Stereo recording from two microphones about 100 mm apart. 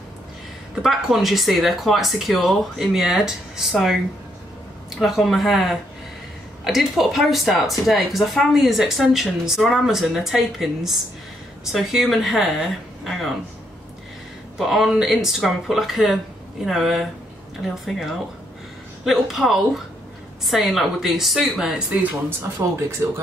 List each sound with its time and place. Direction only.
0.8 s speech: centre (ahead or behind)
14.6 s speech: centre (ahead or behind)
22.6 s speech: 30° right (ahead or behind)